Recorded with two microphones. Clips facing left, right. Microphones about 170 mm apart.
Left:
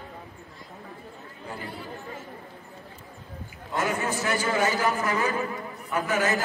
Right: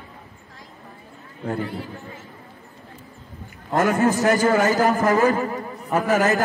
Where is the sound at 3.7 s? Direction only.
50° right (ahead or behind).